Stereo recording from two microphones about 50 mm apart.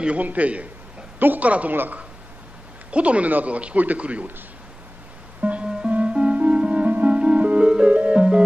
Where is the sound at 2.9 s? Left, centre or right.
Right.